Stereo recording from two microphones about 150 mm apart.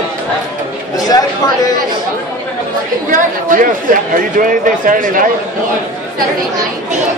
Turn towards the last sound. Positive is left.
turn(degrees=-65)  # may be behind; listen again after turning